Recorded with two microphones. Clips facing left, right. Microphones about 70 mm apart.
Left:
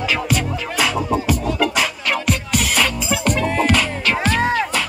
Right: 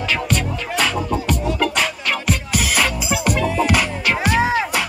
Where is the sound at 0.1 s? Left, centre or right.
Centre.